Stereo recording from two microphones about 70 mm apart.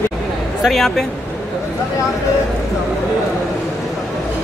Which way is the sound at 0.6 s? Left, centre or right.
Centre.